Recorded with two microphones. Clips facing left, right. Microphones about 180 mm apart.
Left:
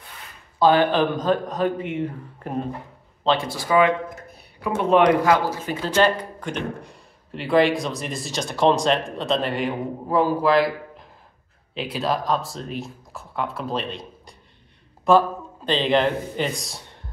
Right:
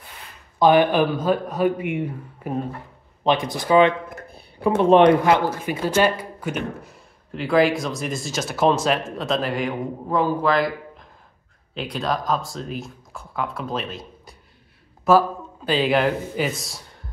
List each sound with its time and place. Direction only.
0.6 s speech: 15° right (ahead or behind)
5.6 s a man's voice: 15° right (ahead or behind)